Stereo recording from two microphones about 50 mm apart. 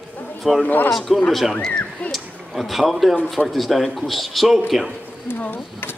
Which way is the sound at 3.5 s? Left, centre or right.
Centre.